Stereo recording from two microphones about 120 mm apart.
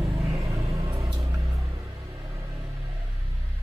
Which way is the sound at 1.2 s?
25° right (ahead or behind).